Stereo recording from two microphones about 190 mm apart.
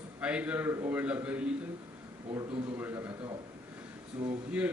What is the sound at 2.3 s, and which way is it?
Speech, 30° right (ahead or behind).